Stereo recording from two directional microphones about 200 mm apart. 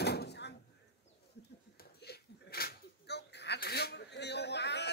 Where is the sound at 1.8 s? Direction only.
55° left (ahead or behind).